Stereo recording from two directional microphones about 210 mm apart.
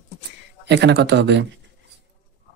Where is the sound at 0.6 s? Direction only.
55° right (ahead or behind).